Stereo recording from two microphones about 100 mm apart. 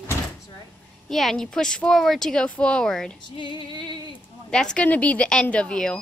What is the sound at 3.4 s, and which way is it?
Female singing, 55° left (ahead or behind).